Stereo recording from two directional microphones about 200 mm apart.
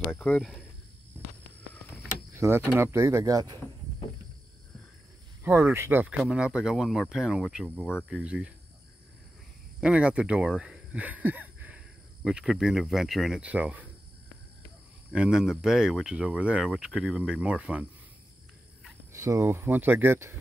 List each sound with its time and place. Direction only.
0.1 s speech: 5° left (ahead or behind)
2.3 s speech: 10° right (ahead or behind)
5.4 s speech: 10° right (ahead or behind)
9.8 s speech: 5° right (ahead or behind)
15.1 s speech: 5° right (ahead or behind)
19.1 s speech: 15° right (ahead or behind)